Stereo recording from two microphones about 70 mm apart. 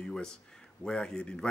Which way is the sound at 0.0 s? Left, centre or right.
Centre.